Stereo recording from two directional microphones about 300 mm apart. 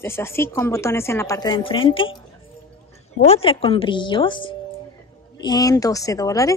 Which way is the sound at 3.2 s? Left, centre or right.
Centre.